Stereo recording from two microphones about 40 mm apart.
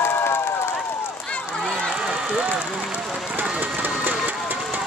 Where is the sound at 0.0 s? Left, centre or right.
Left.